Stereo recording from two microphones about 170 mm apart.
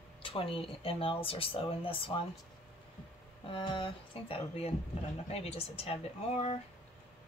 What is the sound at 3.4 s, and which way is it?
Speech, 30° left (ahead or behind).